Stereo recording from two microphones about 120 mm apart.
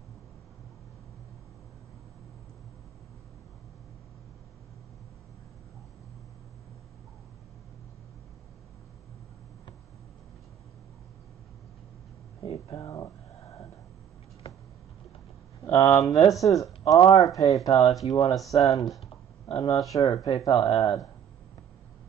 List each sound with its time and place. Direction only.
12.4 s a sound: 55° left (ahead or behind)
12.8 s speech: 25° left (ahead or behind)
15.6 s speech: 25° left (ahead or behind)